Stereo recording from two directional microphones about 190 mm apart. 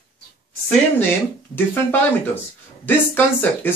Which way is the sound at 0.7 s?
10° left (ahead or behind).